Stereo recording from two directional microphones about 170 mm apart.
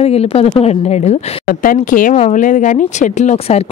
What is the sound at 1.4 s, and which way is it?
Speech, 55° left (ahead or behind).